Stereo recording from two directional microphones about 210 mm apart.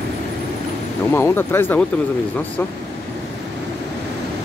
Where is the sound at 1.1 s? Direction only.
10° left (ahead or behind).